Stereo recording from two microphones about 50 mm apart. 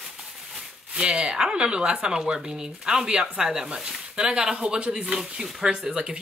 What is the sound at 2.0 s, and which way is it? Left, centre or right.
Speech, centre.